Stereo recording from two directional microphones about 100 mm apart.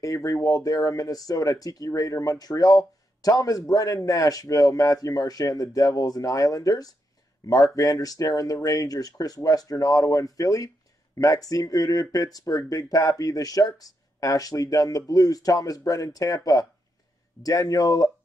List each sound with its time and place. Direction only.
0.0 s speech: 35° left (ahead or behind)